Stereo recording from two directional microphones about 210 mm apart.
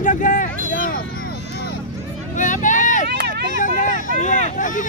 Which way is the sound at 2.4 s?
35° left (ahead or behind).